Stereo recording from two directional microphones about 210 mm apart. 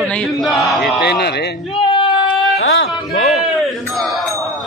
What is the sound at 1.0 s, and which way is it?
Speech, 50° left (ahead or behind).